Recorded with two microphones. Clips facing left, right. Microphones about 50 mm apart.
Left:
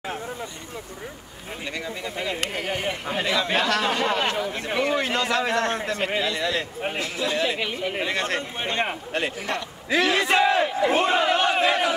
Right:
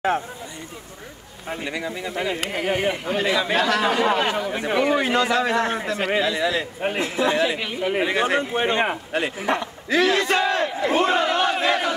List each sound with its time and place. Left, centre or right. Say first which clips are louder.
1.6 s a man's voice: right 2 dB; centre
7.0 s a man's voice: right 6 dB; right
7.3 s a man's voice: right 3 dB; centre
7.9 s speech: right 9 dB; centre
9.1 s a man's voice: right 1 dB; centre
9.8 s battle cry: right 2 dB; centre